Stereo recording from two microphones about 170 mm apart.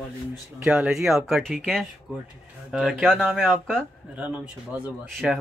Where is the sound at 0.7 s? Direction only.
5° right (ahead or behind).